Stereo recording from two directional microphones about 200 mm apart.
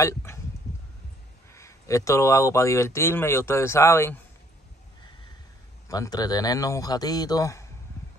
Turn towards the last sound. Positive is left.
turn(degrees=15)  # may be behind; listen again after turning